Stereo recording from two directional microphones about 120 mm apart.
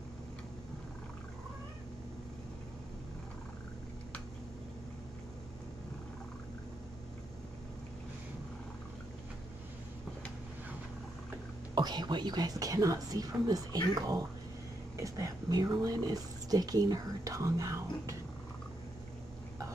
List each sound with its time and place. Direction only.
11.7 s a woman's voice: 35° right (ahead or behind)